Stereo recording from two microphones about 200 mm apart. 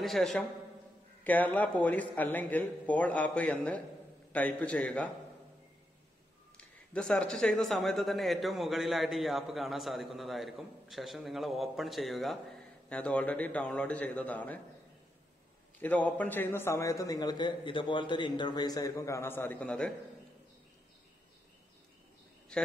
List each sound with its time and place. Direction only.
0.0 s a man's voice: centre (ahead or behind)
6.5 s a man's voice: 5° left (ahead or behind)
15.8 s a man's voice: 5° left (ahead or behind)